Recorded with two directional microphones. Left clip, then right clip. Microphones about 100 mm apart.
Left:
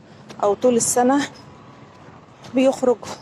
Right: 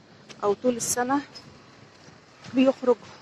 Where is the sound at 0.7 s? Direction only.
35° left (ahead or behind).